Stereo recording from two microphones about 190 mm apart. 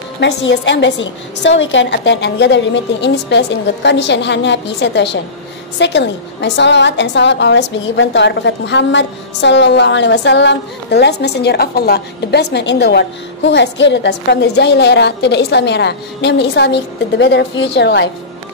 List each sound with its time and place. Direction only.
0.2 s a woman's voice: 70° left (ahead or behind)